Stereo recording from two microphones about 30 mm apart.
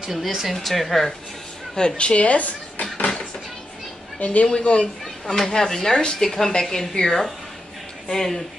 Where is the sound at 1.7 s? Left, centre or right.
Left.